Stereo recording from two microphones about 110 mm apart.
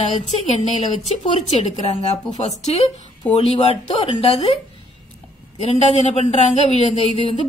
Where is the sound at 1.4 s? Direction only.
80° left.